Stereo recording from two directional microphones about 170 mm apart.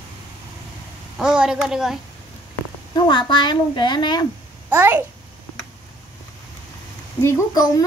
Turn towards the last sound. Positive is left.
turn(degrees=20)  # may be behind; listen again after turning